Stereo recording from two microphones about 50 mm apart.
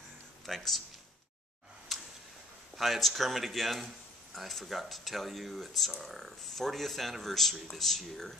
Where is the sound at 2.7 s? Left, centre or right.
Centre.